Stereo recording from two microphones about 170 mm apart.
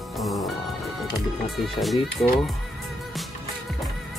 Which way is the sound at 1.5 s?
Centre (ahead or behind).